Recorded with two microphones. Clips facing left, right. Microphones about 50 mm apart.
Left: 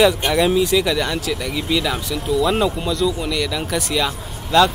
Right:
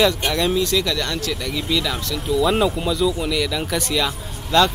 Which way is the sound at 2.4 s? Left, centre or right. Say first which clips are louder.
Right 1 dB; centre.